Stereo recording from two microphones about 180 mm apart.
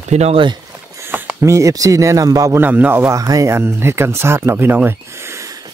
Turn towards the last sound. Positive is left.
turn(degrees=-20)  # may be behind; listen again after turning